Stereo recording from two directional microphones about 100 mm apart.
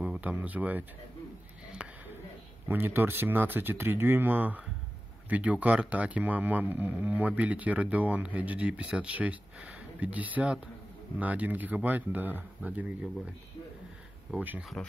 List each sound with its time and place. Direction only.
0.0 s speech: 15° right (ahead or behind)
1.7 s a sound: 10° right (ahead or behind)
2.7 s speech: 20° right (ahead or behind)
14.8 s speech: 5° left (ahead or behind)